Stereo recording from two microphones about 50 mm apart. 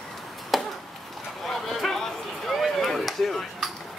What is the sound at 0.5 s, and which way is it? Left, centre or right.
Chop, centre.